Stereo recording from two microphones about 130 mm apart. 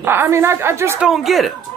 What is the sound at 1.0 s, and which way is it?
Speech, centre (ahead or behind).